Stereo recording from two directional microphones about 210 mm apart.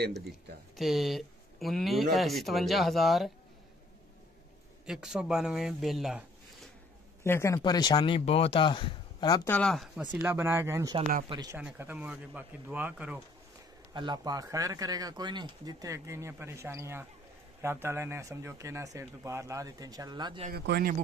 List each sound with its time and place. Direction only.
0.7 s speech: centre (ahead or behind)
4.8 s speech: 5° right (ahead or behind)
7.2 s speech: 15° left (ahead or behind)
10.1 s speech: 10° right (ahead or behind)
11.5 s speech: 5° right (ahead or behind)
13.9 s speech: 20° right (ahead or behind)
20.5 s speech: 50° right (ahead or behind)